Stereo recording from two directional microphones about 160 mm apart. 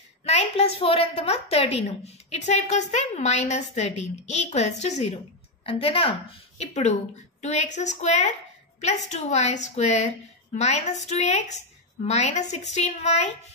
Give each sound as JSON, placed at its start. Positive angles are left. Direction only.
{"t": 0.2, "sound": "a woman's voice", "side_deg": 40}